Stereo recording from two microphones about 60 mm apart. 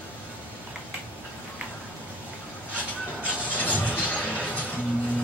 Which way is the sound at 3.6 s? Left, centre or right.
Left.